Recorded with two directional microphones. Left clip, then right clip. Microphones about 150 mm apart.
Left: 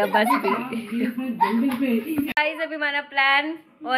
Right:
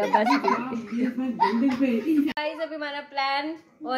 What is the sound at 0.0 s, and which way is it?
Speech, 5° right (ahead or behind).